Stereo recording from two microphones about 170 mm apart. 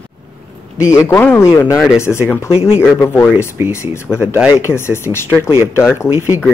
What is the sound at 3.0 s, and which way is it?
Speech, 15° left (ahead or behind).